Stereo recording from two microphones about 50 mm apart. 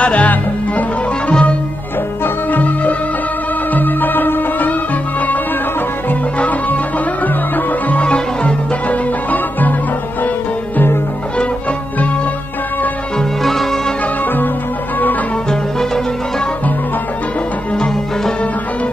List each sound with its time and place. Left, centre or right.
0.0 s music: left
2.2 s music: left
6.3 s music: left
9.3 s music: left
13.4 s music: centre